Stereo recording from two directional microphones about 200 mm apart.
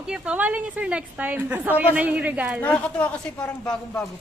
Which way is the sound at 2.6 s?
10° left (ahead or behind).